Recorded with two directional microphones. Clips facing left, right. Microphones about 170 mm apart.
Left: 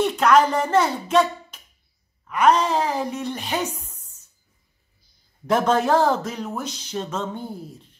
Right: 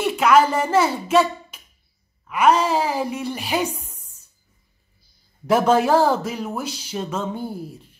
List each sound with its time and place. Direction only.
0.0 s a woman's voice: 5° right (ahead or behind)
5.5 s speech: 10° right (ahead or behind)